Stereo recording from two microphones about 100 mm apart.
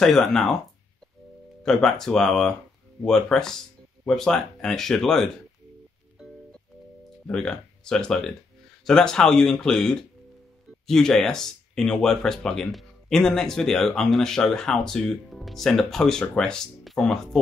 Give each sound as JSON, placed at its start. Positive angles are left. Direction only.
{"t": 0.0, "sound": "speech", "side_deg": 5}
{"t": 1.6, "sound": "speech", "side_deg": 5}
{"t": 7.2, "sound": "speech", "side_deg": 5}